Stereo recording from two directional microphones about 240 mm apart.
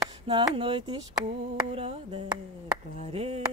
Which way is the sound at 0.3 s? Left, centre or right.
Right.